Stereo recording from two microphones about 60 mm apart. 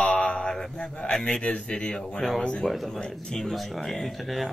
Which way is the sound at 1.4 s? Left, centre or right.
Left.